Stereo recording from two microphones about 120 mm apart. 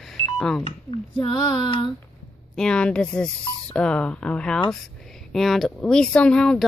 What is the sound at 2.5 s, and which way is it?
Speech, 5° left (ahead or behind).